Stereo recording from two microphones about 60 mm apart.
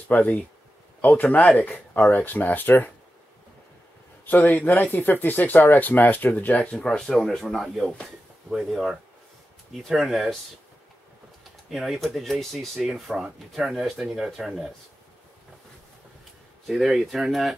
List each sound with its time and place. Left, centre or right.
0.1 s speech: left
4.3 s speech: left; by 7.2 s centre
7.6 s speech: centre
11.7 s speech: centre
16.6 s speech: centre